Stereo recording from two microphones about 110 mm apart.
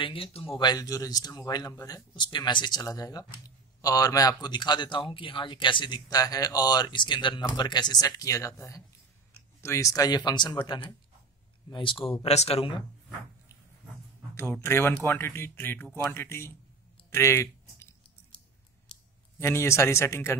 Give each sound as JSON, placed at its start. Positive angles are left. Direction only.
{"t": 0.0, "sound": "speech", "side_deg": 55}
{"t": 2.1, "sound": "speech", "side_deg": 45}
{"t": 12.1, "sound": "speech", "side_deg": 70}
{"t": 14.3, "sound": "speech", "side_deg": 20}
{"t": 17.1, "sound": "a sound", "side_deg": 25}
{"t": 19.3, "sound": "speech", "side_deg": 25}